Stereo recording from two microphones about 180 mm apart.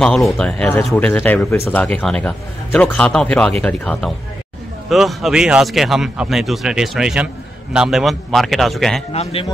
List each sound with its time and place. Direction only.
0.0 s speech: 5° left (ahead or behind)
9.1 s a man's voice: 35° left (ahead or behind)